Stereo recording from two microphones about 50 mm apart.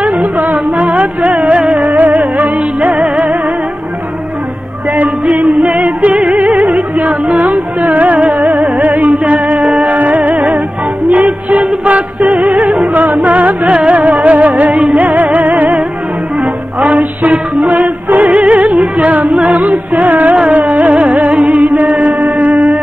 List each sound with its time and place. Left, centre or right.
0.0 s music: right
2.0 s music: right
5.2 s music: right
5.6 s music: right
9.2 s music: right
16.9 s music: right
20.4 s carnatic music: right
21.1 s music: right